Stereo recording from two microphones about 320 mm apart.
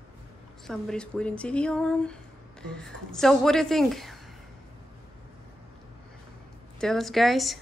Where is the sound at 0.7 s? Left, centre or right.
Centre.